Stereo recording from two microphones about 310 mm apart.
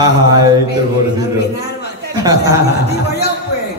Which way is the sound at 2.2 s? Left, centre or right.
Centre.